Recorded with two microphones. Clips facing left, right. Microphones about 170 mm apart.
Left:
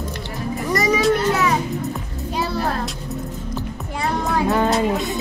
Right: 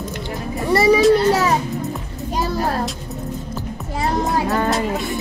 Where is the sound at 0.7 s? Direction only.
30° right (ahead or behind).